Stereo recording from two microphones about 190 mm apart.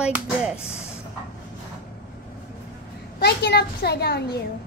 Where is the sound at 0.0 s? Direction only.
5° right (ahead or behind).